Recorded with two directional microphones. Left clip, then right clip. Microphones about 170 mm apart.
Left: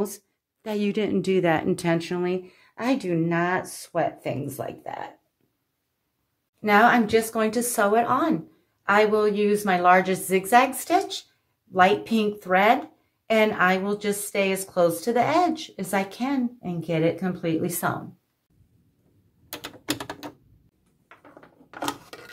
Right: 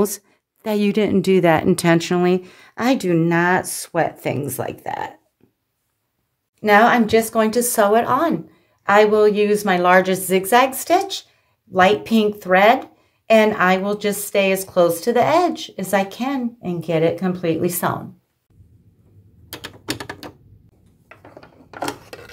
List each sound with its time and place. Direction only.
0.6 s speech: 30° right (ahead or behind); by 5.1 s 65° right (ahead or behind)
6.6 s a woman's voice: 40° right (ahead or behind)
21.7 s a sound: 5° right (ahead or behind)